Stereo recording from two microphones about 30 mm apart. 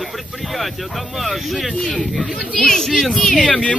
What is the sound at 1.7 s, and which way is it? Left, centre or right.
Speech, centre.